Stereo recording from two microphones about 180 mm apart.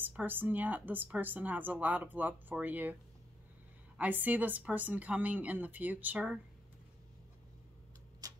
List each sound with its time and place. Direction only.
0.0 s a woman's voice: 10° right (ahead or behind)
4.0 s a woman's voice: 10° right (ahead or behind)
8.2 s a sound: 20° right (ahead or behind)